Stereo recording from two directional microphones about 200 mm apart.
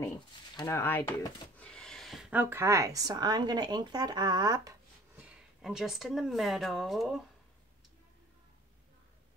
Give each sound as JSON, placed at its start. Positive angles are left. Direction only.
{"t": 0.6, "sound": "speech", "side_deg": 15}
{"t": 5.2, "sound": "speech", "side_deg": -5}